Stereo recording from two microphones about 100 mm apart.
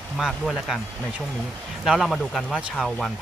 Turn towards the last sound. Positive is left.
turn(degrees=0)  # may be behind; listen again after turning